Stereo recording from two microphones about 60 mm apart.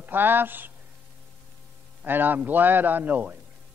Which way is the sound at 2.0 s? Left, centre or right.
Right.